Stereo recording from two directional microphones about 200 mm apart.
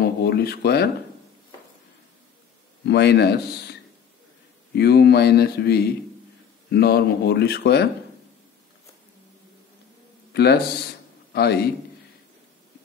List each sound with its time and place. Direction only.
0.0 s speech: 55° left (ahead or behind)
2.9 s a man's voice: 60° left (ahead or behind)
4.7 s speech: 55° left (ahead or behind)
10.3 s speech: 55° left (ahead or behind)